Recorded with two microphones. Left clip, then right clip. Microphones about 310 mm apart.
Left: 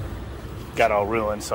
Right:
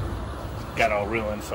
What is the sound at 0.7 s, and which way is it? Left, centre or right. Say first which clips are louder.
Speech: left 3 dB; centre.